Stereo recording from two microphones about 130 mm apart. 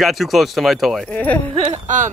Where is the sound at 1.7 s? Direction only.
70° right (ahead or behind).